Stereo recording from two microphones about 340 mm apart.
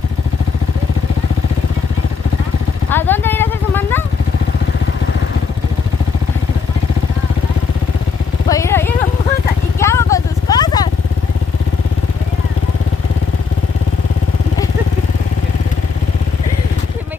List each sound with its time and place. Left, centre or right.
2.9 s vehicle: centre
8.5 s vehicle: centre